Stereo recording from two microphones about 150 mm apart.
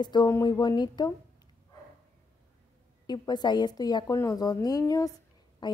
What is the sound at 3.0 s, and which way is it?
A woman's voice, 30° left (ahead or behind).